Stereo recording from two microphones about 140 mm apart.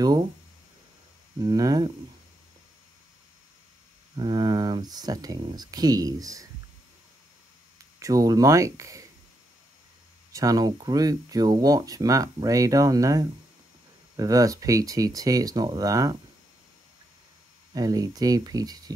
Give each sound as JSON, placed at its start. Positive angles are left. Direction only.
{"t": 1.4, "sound": "speech", "side_deg": -25}
{"t": 4.1, "sound": "speech", "side_deg": -30}
{"t": 8.0, "sound": "speech", "side_deg": -25}
{"t": 10.3, "sound": "speech", "side_deg": -25}
{"t": 17.7, "sound": "speech", "side_deg": -25}